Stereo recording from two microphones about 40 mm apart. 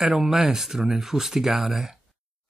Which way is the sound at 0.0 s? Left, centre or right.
Centre.